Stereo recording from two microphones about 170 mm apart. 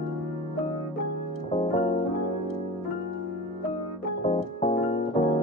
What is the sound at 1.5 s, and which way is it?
Keyboard, 30° left (ahead or behind).